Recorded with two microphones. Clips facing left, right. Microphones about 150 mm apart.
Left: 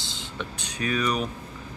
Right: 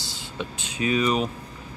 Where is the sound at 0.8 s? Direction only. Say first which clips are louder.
Right 4 dB; 25° right (ahead or behind).